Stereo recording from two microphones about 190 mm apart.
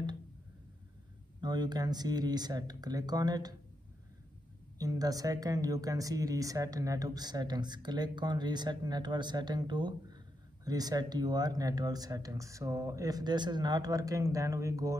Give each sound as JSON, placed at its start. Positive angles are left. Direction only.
{"t": 1.4, "sound": "speech", "side_deg": -20}
{"t": 4.7, "sound": "speech", "side_deg": -20}